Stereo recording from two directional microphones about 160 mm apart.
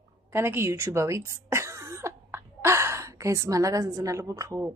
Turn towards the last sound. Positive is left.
turn(degrees=-20)  # may be behind; listen again after turning